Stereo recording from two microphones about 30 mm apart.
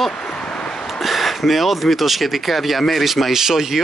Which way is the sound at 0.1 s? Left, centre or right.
Left.